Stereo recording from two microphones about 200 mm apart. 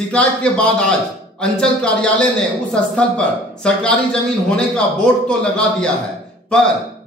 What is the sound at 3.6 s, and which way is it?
Speech, 5° left (ahead or behind).